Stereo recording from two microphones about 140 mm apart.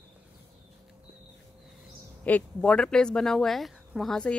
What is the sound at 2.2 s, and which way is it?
Speech, 10° left (ahead or behind).